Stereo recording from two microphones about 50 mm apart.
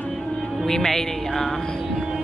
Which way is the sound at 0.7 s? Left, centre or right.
Centre.